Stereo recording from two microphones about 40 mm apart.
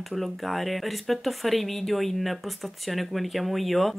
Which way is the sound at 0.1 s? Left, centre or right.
Centre.